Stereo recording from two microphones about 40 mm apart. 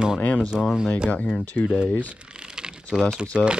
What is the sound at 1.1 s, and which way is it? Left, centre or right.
Speech, left.